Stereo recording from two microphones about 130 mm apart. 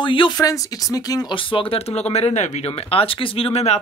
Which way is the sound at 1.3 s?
40° left (ahead or behind).